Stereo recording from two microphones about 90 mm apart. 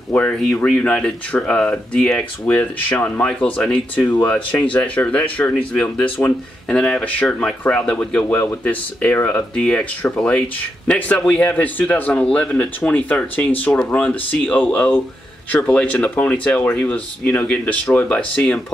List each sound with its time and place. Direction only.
0.1 s speech: 20° left (ahead or behind)